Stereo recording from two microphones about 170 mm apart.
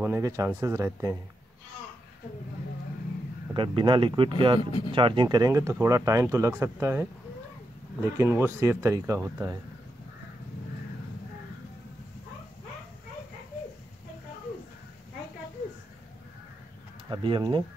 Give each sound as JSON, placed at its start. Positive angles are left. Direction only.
{"t": 0.0, "sound": "speech", "side_deg": -15}
{"t": 3.5, "sound": "speech", "side_deg": -30}
{"t": 4.6, "sound": "speech", "side_deg": 25}
{"t": 4.9, "sound": "speech", "side_deg": -30}
{"t": 8.2, "sound": "speech", "side_deg": -15}
{"t": 17.1, "sound": "speech", "side_deg": -30}